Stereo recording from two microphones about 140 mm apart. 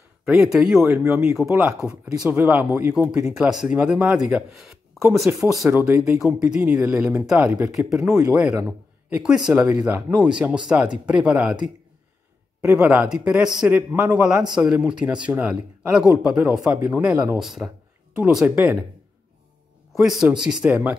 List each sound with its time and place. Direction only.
0.2 s speech: 5° right (ahead or behind)
0.8 s speech: 20° right (ahead or behind)
1.7 s speech: 5° right (ahead or behind)
12.6 s speech: 15° right (ahead or behind)
19.9 s speech: centre (ahead or behind)